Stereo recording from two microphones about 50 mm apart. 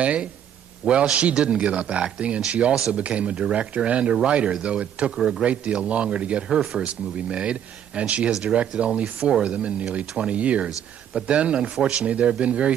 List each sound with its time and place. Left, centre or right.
0.0 s speech: right
5.1 s speech: centre
5.4 s speech: right
6.6 s speech: centre
6.9 s speech: right